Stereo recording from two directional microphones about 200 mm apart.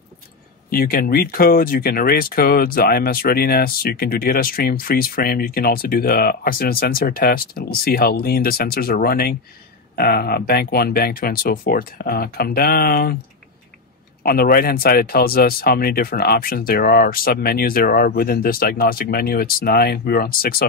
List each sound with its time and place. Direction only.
0.7 s speech: 45° left (ahead or behind)
14.2 s speech: 45° left (ahead or behind)